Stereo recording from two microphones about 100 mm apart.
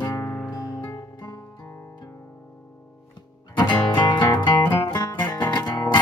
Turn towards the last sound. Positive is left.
turn(degrees=40)  # may be behind; listen again after turning